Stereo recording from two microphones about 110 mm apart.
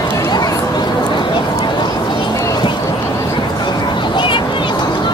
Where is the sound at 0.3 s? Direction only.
35° left (ahead or behind).